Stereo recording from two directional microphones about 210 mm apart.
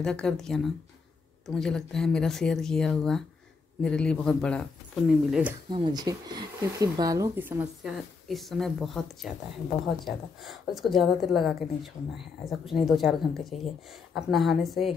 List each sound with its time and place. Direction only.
0.0 s a woman's voice: 5° left (ahead or behind)
5.3 s speech: 5° right (ahead or behind)
5.7 s a woman's voice: 20° right (ahead or behind); by 15.0 s centre (ahead or behind)